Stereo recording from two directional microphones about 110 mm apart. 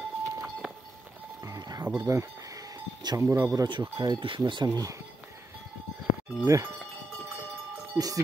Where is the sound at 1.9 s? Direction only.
30° right (ahead or behind).